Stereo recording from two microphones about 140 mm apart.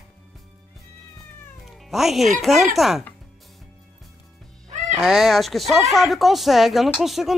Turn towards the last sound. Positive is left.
turn(degrees=0)  # may be behind; listen again after turning